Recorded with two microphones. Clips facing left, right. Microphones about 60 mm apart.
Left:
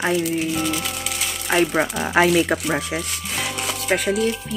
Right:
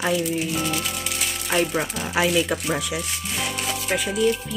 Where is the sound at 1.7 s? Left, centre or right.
Left.